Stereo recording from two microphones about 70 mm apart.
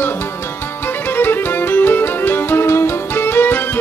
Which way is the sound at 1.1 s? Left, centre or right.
Left.